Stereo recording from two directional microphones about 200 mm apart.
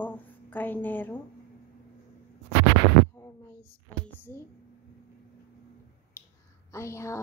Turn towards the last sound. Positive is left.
turn(degrees=15)  # may be behind; listen again after turning